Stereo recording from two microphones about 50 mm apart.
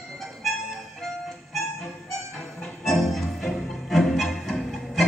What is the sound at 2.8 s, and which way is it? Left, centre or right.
Music, centre.